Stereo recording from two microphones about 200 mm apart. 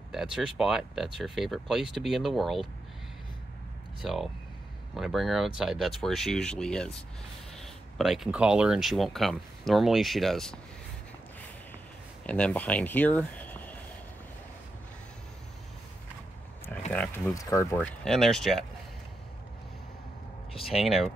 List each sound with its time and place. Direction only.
0.1 s speech: centre (ahead or behind)
4.0 s speech: centre (ahead or behind)
12.3 s speech: 5° left (ahead or behind)
16.9 s speech: 10° left (ahead or behind)
17.7 s speech: centre (ahead or behind)
20.6 s speech: centre (ahead or behind)